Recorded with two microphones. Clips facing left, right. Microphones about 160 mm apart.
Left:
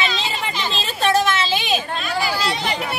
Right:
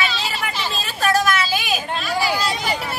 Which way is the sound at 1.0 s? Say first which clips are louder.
Left 1 dB; 25° left (ahead or behind).